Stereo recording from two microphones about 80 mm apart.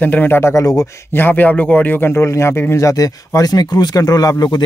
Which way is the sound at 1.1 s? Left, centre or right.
Left.